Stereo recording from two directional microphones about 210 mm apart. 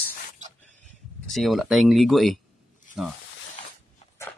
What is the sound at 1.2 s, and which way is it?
Speech, centre (ahead or behind).